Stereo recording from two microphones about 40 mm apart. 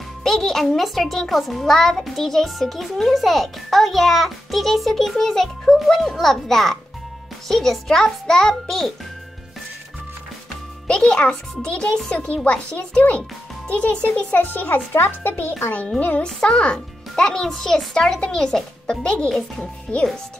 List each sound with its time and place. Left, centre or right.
0.2 s a child's voice: centre
10.9 s a child's voice: left
16.4 s speech: left
16.7 s a child's voice: centre